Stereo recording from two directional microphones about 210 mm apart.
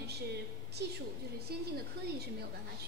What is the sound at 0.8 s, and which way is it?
Speech, 55° right (ahead or behind).